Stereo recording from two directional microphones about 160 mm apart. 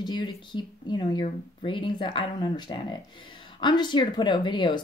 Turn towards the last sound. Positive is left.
turn(degrees=30)  # may be behind; listen again after turning